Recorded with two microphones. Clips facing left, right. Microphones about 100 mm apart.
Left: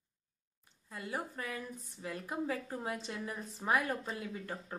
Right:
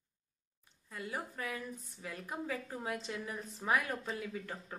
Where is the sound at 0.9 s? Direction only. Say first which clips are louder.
Left 1 dB; centre (ahead or behind).